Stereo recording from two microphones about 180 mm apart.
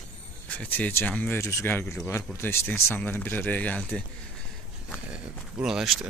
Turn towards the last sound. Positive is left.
turn(degrees=0)  # may be behind; listen again after turning